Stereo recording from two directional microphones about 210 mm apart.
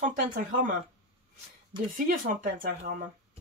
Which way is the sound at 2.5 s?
45° right (ahead or behind).